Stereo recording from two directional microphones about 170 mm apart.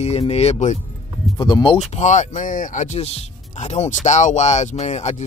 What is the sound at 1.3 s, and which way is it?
Speech, 25° left (ahead or behind).